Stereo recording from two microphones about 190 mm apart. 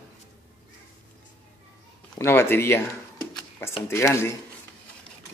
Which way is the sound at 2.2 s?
10° left (ahead or behind).